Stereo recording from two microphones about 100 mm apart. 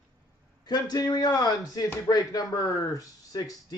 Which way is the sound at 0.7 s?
40° left (ahead or behind).